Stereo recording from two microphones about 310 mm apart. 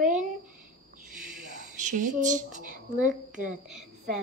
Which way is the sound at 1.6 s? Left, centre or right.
Right.